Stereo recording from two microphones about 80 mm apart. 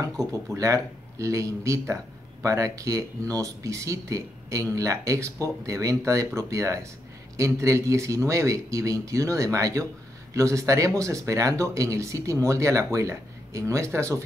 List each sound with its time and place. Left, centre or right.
0.6 s speech: right